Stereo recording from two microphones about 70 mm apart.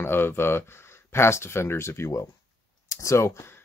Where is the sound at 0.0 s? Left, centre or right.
Left.